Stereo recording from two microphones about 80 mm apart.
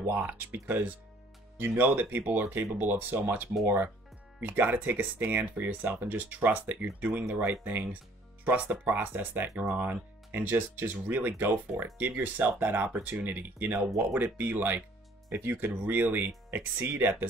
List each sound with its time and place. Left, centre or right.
0.3 s speech: right